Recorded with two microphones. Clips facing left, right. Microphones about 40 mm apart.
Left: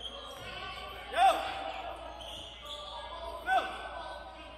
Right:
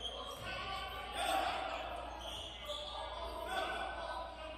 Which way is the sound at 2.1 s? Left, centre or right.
Left.